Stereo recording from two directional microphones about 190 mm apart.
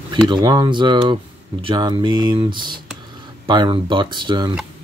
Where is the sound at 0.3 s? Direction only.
20° right (ahead or behind).